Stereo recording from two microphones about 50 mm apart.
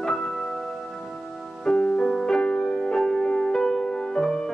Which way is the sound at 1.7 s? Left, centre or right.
Centre.